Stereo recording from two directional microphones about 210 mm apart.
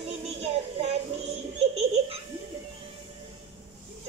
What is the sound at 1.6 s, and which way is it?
Giggle, 30° right (ahead or behind).